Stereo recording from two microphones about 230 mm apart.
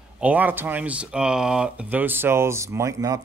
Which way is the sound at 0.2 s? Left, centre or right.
Centre.